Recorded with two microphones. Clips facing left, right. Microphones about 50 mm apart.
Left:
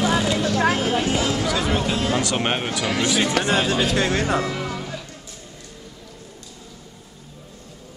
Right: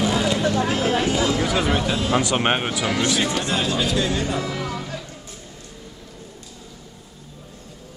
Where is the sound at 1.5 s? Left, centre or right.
Right.